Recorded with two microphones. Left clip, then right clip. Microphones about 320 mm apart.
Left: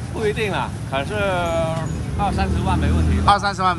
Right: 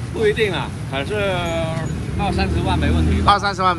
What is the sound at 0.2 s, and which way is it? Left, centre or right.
Speech, centre.